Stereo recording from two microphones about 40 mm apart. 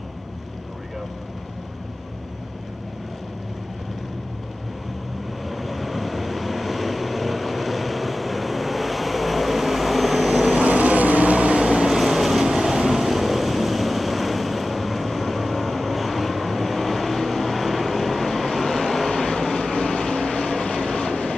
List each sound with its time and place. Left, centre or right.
5.4 s vehicle: centre
10.5 s vehicle: right
11.9 s vehicle: centre
21.1 s vehicle: centre